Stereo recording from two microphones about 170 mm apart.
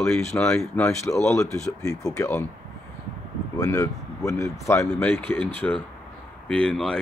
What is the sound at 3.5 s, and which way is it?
Speech, 20° left (ahead or behind).